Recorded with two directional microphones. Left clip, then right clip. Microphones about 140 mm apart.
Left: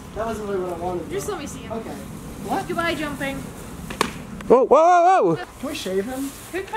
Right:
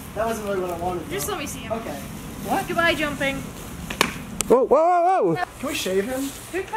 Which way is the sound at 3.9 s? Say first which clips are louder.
Right 2 dB; 5° right (ahead or behind).